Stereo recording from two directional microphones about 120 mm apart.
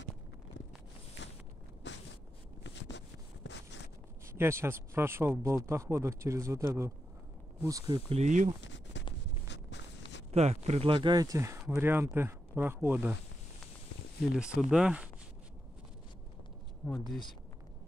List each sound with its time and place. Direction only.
4.4 s speech: 20° right (ahead or behind)
8.1 s speech: 80° right
10.3 s speech: 65° right (ahead or behind)
10.9 s speech: 40° right (ahead or behind); by 13.1 s 15° right (ahead or behind)
14.3 s speech: 5° right (ahead or behind)
16.8 s speech: centre (ahead or behind)